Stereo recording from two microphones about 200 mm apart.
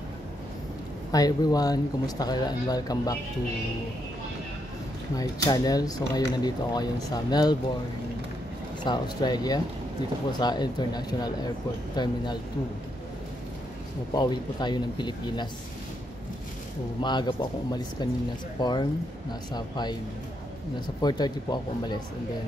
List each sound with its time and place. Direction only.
1.1 s speech: 20° left (ahead or behind)
5.1 s speech: 20° left (ahead or behind)
8.8 s speech: 20° left (ahead or behind)
14.1 s speech: 20° left (ahead or behind)
17.0 s speech: 20° left (ahead or behind)
21.0 s speech: 20° left (ahead or behind)